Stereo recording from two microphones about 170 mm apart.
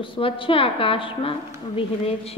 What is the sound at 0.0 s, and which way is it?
A woman's voice, 30° left (ahead or behind).